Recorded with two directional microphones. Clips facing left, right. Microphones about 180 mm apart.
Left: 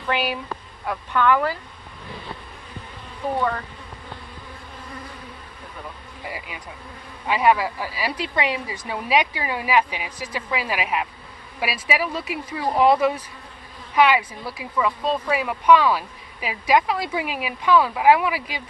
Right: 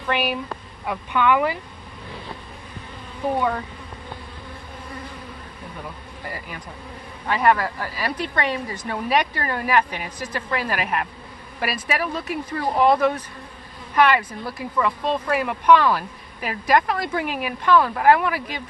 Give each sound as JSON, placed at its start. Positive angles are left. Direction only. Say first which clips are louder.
{"t": 0.1, "sound": "speech", "louder": "right 1 dB", "side_deg": 0}
{"t": 3.3, "sound": "speech", "louder": "even", "side_deg": -5}
{"t": 6.2, "sound": "speech", "louder": "even", "side_deg": 5}